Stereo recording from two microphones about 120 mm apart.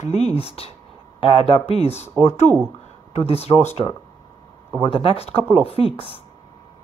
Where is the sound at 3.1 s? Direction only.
60° left (ahead or behind).